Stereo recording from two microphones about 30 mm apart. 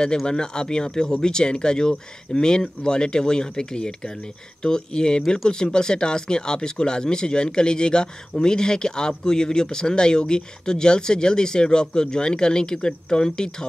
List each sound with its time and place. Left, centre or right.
0.3 s speech: left